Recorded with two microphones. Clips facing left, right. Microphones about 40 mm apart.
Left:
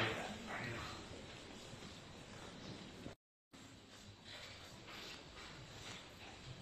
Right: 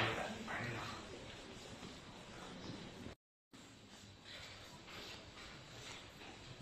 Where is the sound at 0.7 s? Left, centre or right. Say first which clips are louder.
Right 2 dB; right.